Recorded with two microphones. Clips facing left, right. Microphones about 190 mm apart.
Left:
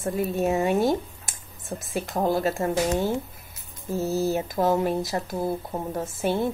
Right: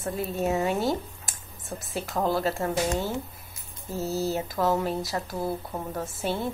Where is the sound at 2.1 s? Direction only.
15° left (ahead or behind).